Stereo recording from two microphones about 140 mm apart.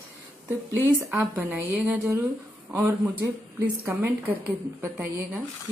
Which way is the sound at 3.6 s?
10° right (ahead or behind).